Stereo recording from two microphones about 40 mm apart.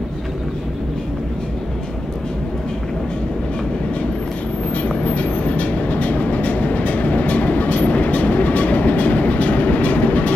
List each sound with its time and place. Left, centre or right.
4.8 s vehicle: left